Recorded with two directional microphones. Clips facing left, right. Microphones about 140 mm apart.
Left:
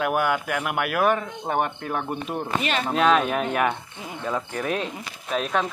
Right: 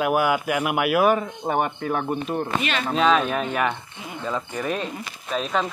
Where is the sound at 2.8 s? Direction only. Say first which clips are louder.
Even; 10° left (ahead or behind).